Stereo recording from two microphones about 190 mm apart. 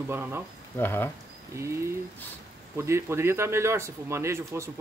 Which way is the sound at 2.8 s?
15° right (ahead or behind).